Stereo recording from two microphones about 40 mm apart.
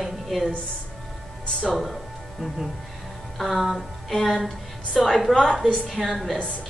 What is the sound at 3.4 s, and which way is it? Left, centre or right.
A woman's voice, centre.